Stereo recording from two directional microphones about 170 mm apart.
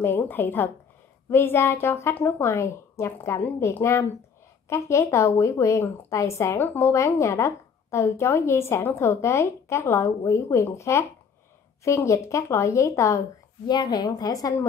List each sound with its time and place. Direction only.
0.0 s a woman's voice: 15° left (ahead or behind)